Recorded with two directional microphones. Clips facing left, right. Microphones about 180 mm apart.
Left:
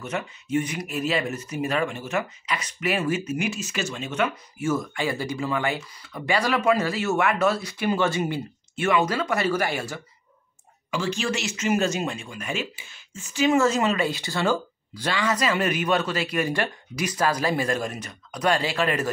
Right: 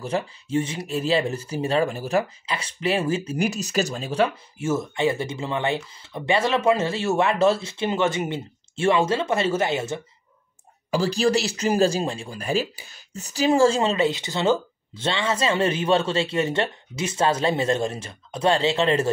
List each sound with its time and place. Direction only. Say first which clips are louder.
0.0 s speech: right 4 dB; 30° right (ahead or behind)
10.9 s speech: right 6 dB; 35° right (ahead or behind)